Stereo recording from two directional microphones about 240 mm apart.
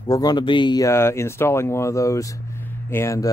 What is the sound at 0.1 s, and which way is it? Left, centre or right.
Speech, centre.